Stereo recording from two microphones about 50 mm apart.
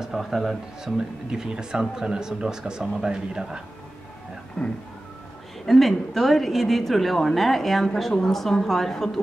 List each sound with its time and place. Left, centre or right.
0.0 s a woman's voice: centre
4.6 s speech: centre
5.7 s a woman's voice: centre